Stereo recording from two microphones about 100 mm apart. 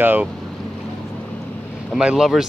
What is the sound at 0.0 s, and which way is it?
Speech, 20° right (ahead or behind).